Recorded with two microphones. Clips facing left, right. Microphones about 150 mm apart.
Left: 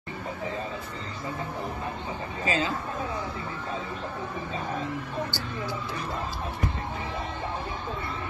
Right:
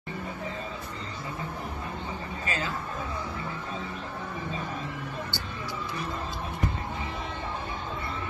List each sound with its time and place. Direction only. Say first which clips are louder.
2.4 s speech: left 6 dB; 20° left (ahead or behind)